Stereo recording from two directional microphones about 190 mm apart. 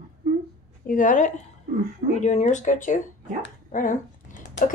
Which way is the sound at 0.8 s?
45° left (ahead or behind).